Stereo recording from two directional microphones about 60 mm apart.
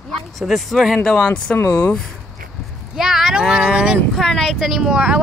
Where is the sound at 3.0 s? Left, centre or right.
Centre.